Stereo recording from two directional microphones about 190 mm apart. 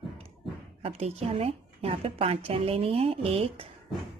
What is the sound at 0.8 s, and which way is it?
A woman's voice, 30° right (ahead or behind).